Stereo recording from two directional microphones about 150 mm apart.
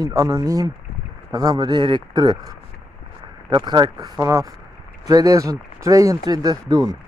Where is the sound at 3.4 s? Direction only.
30° right (ahead or behind).